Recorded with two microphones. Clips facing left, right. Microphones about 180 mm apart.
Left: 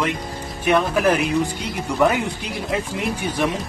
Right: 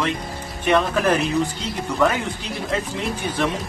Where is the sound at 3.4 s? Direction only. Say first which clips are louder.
Left 1 dB; 10° left (ahead or behind).